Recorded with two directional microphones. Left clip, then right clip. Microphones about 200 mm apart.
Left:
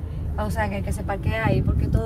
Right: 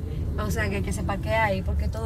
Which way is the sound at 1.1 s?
50° left (ahead or behind).